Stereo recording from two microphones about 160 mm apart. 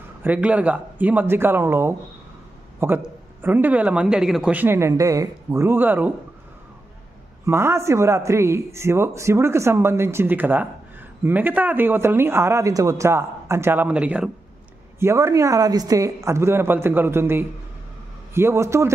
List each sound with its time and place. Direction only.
0.2 s a man's voice: 10° right (ahead or behind)
7.4 s a man's voice: 15° right (ahead or behind)
15.0 s a man's voice: 15° right (ahead or behind)